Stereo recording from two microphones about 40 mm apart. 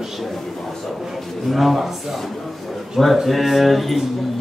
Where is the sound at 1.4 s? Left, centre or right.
Centre.